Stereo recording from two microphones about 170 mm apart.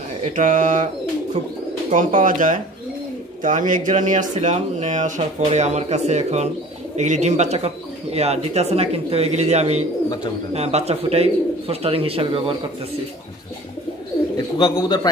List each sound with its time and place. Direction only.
0.2 s speech: 50° right (ahead or behind)
1.9 s speech: 45° right (ahead or behind)
14.6 s a man's voice: 25° left (ahead or behind)